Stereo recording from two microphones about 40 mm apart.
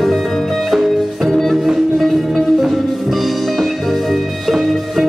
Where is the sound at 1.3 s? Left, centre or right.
Centre.